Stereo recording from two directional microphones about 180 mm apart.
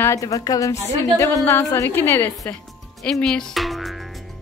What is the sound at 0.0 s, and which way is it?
A woman's voice, 15° left (ahead or behind).